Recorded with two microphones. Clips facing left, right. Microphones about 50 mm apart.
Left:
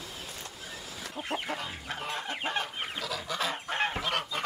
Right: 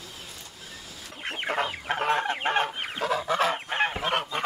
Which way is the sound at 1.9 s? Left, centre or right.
Right.